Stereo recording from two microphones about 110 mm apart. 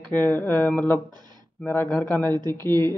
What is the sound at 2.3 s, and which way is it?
Speech, 40° right (ahead or behind).